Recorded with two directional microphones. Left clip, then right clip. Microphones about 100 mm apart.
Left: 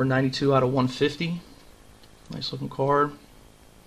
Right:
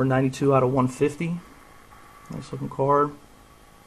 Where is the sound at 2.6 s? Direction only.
15° left (ahead or behind).